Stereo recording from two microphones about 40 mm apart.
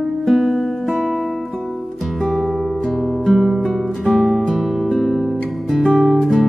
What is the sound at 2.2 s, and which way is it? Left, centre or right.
Music, centre.